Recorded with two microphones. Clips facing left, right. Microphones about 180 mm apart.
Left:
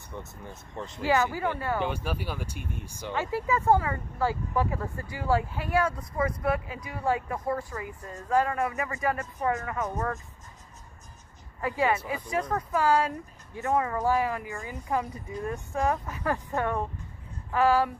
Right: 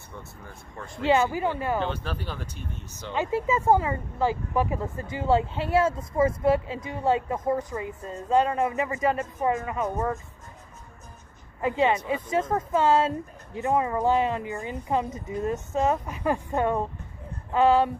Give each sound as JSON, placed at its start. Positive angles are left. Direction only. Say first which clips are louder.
{"t": 0.5, "sound": "speech", "louder": "left 2 dB", "side_deg": 20}
{"t": 1.0, "sound": "speech", "louder": "right 3 dB", "side_deg": -20}
{"t": 1.8, "sound": "speech", "louder": "right 1 dB", "side_deg": 10}
{"t": 3.1, "sound": "speech", "louder": "right 3 dB", "side_deg": -20}
{"t": 11.6, "sound": "speech", "louder": "right 3 dB", "side_deg": -20}